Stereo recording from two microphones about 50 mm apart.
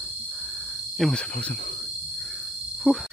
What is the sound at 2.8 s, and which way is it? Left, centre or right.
Speech, centre.